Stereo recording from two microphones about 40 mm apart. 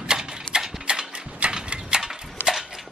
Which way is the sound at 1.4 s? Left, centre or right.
Right.